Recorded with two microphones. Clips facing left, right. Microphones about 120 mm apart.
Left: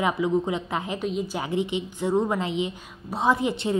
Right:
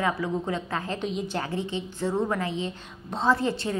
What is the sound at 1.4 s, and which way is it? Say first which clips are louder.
A woman's voice: left 4 dB; 20° left (ahead or behind).